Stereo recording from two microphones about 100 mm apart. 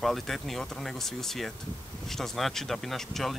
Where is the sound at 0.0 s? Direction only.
Centre (ahead or behind).